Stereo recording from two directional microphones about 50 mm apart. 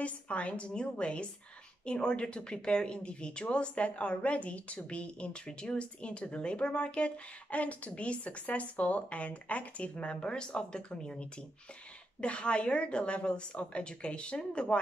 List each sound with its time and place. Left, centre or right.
0.0 s speech: left